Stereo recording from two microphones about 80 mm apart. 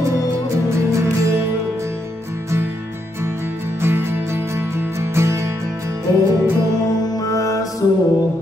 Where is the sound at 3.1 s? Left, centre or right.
Right.